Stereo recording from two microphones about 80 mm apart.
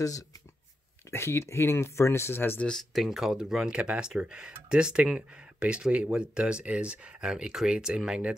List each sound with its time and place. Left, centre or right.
1.1 s speech: left
2.6 s speech: centre